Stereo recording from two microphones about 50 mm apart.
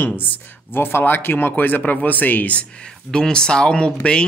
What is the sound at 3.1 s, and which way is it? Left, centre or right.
Speech, centre.